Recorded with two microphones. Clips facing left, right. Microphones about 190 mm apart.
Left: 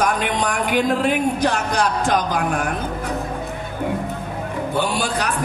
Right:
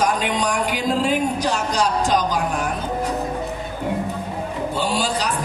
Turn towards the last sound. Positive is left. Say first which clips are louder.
# left 1 dB
turn(degrees=60)  # may be behind; listen again after turning